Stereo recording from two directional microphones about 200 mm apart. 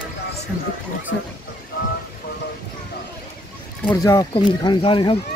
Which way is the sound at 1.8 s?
45° left (ahead or behind).